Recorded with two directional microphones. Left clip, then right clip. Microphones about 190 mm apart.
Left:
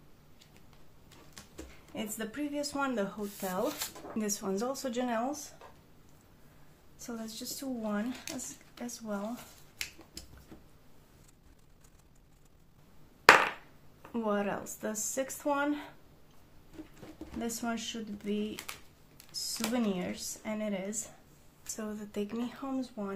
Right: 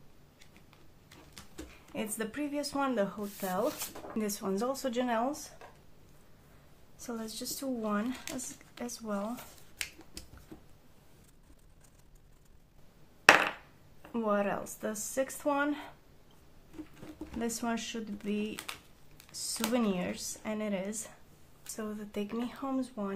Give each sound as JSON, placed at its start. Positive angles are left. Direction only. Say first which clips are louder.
{"t": 1.3, "sound": "speech", "louder": "right 1 dB", "side_deg": -25}
{"t": 7.0, "sound": "speech", "louder": "right 2 dB", "side_deg": -20}
{"t": 14.1, "sound": "speech", "louder": "right 2 dB", "side_deg": -10}
{"t": 17.4, "sound": "speech", "louder": "right 1 dB", "side_deg": -20}
{"t": 21.7, "sound": "speech", "louder": "even", "side_deg": -10}